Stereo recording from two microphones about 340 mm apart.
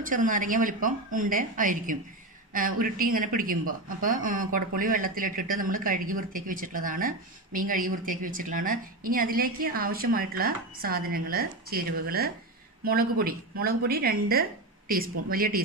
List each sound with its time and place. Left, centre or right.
0.0 s a woman's voice: right